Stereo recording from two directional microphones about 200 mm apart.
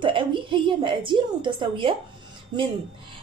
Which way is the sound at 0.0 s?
25° right (ahead or behind).